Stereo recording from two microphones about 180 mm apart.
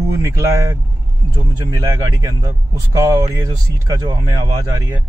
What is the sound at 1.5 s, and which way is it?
Speech, 20° right (ahead or behind).